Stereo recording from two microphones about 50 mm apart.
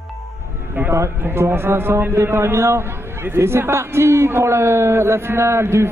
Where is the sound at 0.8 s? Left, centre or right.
Right.